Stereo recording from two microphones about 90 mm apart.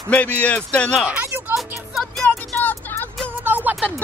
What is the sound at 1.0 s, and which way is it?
Speech, 20° right (ahead or behind).